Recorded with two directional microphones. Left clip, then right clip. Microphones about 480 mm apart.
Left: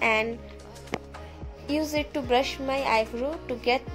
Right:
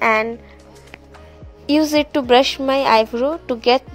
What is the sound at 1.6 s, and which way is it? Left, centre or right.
Speech, centre.